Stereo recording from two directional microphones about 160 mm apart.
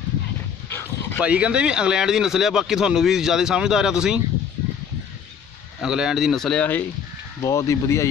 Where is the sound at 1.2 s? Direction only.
10° right (ahead or behind).